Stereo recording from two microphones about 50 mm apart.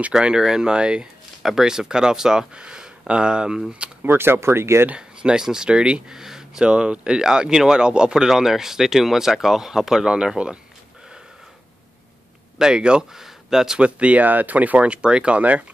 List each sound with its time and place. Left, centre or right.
0.2 s speech: centre
4.0 s speech: right
4.9 s speech: centre
6.1 s speech: centre
12.5 s speech: centre
13.2 s a sound: centre
13.7 s speech: right
14.2 s speech: right